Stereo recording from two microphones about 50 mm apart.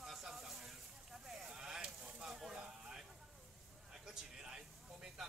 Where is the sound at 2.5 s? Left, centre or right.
Right.